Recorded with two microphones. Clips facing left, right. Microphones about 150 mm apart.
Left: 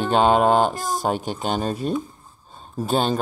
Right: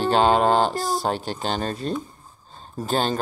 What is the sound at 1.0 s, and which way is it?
Speech, 10° left (ahead or behind).